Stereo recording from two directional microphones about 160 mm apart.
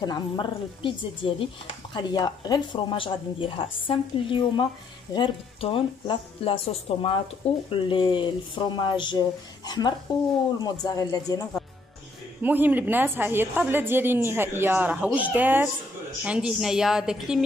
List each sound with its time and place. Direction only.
0.0 s speech: 30° left (ahead or behind)
12.4 s a woman's voice: 10° right (ahead or behind)